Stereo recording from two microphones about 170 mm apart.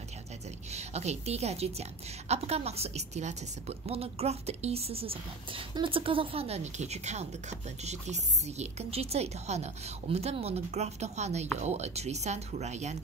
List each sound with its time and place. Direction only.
0.7 s a woman's voice: 40° right (ahead or behind)